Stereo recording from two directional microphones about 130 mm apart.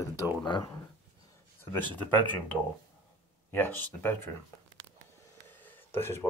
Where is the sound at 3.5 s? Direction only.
15° left (ahead or behind).